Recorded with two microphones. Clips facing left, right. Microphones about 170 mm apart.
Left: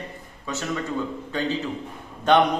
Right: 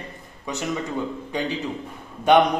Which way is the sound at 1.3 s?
15° right (ahead or behind).